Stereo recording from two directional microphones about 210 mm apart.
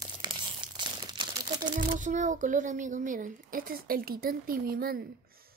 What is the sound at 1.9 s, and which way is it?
Speech, 35° right (ahead or behind).